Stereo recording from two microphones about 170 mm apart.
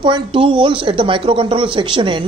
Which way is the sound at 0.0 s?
30° right (ahead or behind).